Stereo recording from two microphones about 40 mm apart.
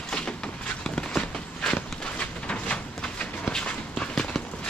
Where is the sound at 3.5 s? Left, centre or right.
Left.